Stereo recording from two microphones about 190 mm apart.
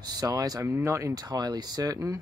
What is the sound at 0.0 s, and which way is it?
Speech, 20° right (ahead or behind).